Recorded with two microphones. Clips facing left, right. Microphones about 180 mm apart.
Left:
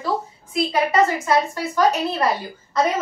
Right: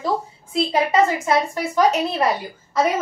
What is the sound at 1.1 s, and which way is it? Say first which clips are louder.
A woman's voice: even; 20° right (ahead or behind).